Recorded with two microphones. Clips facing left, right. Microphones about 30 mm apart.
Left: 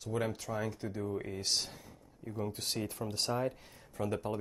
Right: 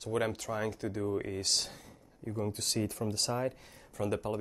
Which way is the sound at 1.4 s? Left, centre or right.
Right.